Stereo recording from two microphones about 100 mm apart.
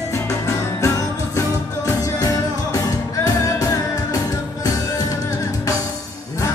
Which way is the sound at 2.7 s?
35° left (ahead or behind).